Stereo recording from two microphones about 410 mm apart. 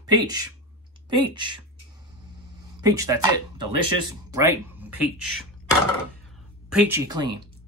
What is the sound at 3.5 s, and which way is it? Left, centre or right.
Speech, right.